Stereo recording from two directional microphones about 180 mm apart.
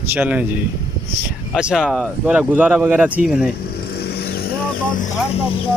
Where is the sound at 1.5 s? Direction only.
5° right (ahead or behind).